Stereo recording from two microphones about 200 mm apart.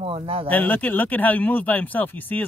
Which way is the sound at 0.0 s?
30° right (ahead or behind).